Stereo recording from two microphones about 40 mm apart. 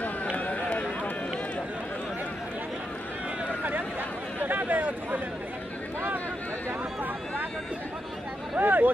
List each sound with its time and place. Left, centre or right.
0.4 s run: left
3.4 s a sound: right
4.4 s chatter: right
8.5 s speech: right